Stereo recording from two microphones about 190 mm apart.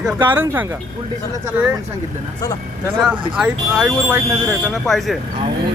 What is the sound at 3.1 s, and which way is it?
Speech, 5° right (ahead or behind).